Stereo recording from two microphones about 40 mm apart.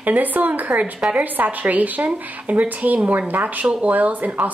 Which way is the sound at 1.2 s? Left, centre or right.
Right.